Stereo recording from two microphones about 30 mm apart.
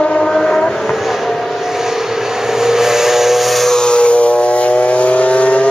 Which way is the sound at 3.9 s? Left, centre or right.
Left.